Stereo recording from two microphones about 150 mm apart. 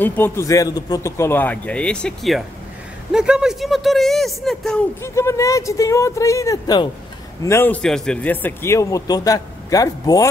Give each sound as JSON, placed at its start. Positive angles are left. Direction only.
{"t": 0.0, "sound": "a man's voice", "side_deg": 15}
{"t": 5.0, "sound": "speech", "side_deg": 20}
{"t": 7.4, "sound": "speech", "side_deg": 15}